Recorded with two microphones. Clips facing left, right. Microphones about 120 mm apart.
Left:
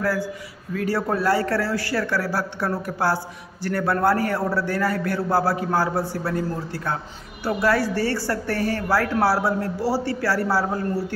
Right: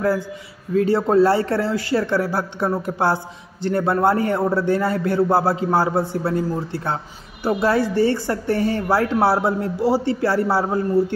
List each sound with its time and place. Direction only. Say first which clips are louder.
0.0 s a woman's voice: right 3 dB; 20° right (ahead or behind)